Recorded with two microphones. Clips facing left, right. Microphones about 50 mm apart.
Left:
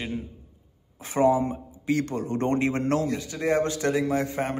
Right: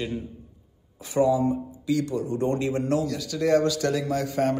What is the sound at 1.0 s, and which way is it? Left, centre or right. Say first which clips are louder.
A man's voice: even; left.